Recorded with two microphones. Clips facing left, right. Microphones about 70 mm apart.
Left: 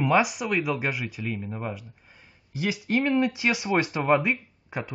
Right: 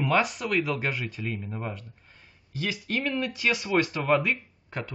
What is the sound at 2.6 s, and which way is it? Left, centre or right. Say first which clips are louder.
Speech: left 5 dB; centre.